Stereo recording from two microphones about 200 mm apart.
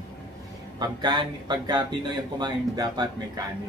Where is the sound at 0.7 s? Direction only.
20° right (ahead or behind).